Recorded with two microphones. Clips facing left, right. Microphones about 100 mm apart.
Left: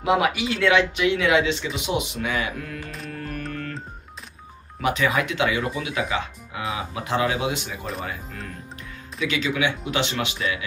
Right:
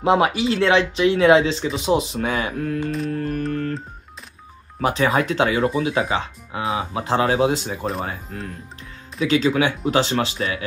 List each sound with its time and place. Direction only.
0.0 s speech: 30° right (ahead or behind)
3.1 s music: 35° right (ahead or behind)
4.8 s speech: 35° right (ahead or behind)